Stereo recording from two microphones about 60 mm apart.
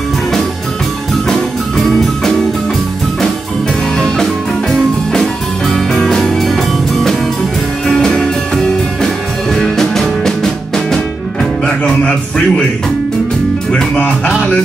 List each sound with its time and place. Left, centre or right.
3.9 s music: centre
13.9 s music: left